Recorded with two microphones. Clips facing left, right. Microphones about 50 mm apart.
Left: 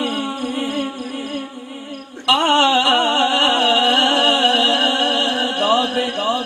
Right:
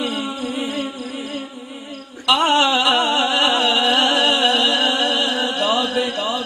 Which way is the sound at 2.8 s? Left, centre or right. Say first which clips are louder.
Left 1 dB; left.